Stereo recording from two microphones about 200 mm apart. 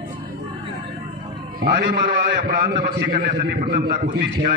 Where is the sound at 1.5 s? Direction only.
45° right (ahead or behind).